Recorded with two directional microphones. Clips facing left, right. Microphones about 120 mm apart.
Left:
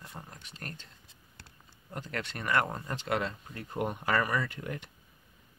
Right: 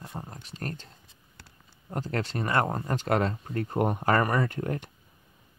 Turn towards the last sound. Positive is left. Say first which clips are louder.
# right 6 dB
turn(degrees=-45)  # may be behind; listen again after turning